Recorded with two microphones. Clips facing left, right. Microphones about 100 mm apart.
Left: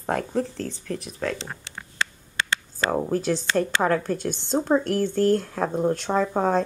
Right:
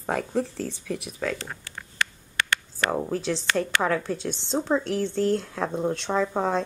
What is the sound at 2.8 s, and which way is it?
Speech, 10° left (ahead or behind).